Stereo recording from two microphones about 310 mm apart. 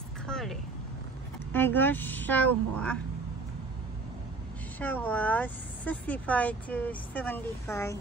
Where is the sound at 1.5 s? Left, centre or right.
Centre.